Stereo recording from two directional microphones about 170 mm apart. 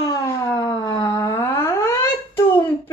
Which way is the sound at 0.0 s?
20° left (ahead or behind).